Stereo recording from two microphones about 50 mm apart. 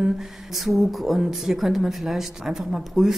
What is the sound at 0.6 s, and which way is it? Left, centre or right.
Speech, centre.